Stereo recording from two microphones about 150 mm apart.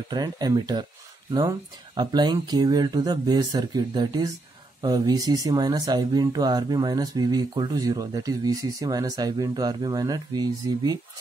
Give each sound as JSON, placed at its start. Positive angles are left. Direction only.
{"t": 0.1, "sound": "speech", "side_deg": -25}
{"t": 2.0, "sound": "speech", "side_deg": -30}